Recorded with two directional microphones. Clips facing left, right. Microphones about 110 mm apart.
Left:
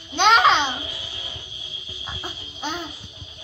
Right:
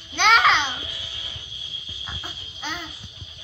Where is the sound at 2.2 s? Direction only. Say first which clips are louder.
Left 5 dB; 30° left (ahead or behind).